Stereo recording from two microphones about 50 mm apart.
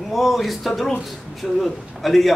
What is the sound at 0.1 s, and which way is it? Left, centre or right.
A man's voice, centre.